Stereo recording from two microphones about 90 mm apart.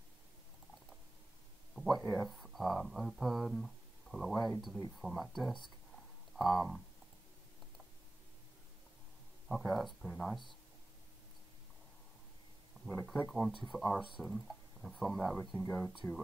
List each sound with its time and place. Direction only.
1.8 s speech: centre (ahead or behind)
9.5 s speech: centre (ahead or behind)
13.3 s speech: centre (ahead or behind)
15.5 s speech: 15° left (ahead or behind)